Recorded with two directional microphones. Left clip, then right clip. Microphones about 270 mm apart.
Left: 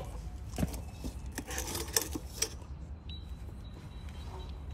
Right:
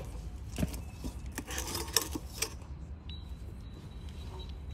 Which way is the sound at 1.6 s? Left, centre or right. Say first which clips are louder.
Right 1 dB; centre.